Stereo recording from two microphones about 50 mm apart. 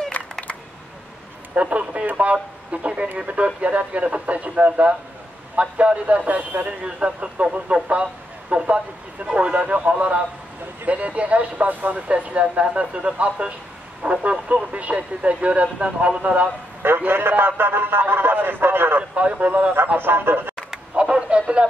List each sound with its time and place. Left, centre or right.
0.1 s a sound: left
1.5 s speech: right
16.8 s a man's voice: right
19.1 s speech: right
20.0 s a man's voice: right
20.7 s a sound: right